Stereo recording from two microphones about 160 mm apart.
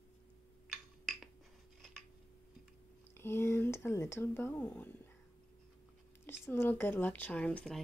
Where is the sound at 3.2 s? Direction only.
15° left (ahead or behind).